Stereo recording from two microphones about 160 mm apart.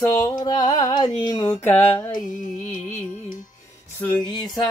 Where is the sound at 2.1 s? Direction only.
55° left (ahead or behind).